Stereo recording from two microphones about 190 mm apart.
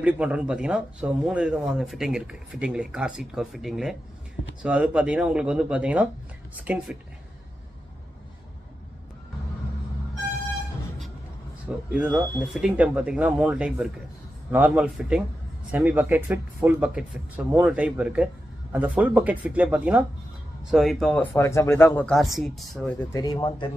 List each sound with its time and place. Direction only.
0.0 s speech: 5° right (ahead or behind)
11.9 s speech: 5° right (ahead or behind)
23.1 s speech: 20° left (ahead or behind)